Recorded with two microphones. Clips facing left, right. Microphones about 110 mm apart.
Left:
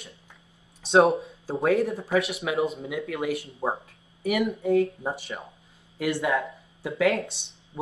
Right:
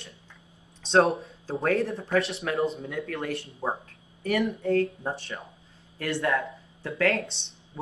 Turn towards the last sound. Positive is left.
turn(degrees=10)  # may be behind; listen again after turning